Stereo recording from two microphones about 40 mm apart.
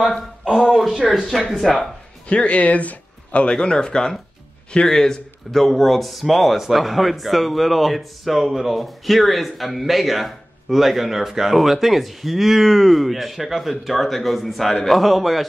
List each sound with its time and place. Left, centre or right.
0.5 s speech: centre
1.7 s speech: left
3.5 s speech: left; by 15.4 s centre